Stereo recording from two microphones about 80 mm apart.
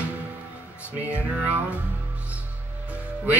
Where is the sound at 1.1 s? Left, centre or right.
Centre.